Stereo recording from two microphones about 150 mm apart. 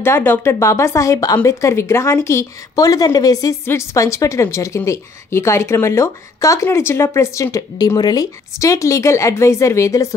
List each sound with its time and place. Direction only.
0.0 s speech: 15° left (ahead or behind)